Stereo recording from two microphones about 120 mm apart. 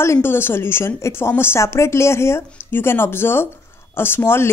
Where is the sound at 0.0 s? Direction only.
20° left (ahead or behind).